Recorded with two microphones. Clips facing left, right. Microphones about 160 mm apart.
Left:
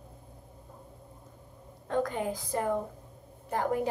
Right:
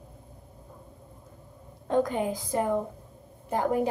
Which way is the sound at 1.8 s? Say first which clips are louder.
Right 4 dB; 20° right (ahead or behind).